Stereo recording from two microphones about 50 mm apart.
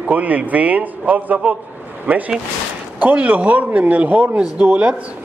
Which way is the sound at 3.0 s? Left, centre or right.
Right.